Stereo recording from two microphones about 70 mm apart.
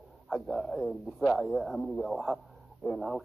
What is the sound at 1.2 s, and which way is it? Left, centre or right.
Speech, centre.